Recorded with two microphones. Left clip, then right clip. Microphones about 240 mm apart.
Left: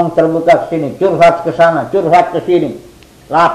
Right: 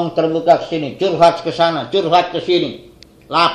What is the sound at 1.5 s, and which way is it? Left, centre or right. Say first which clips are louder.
Speech: left 5 dB; centre.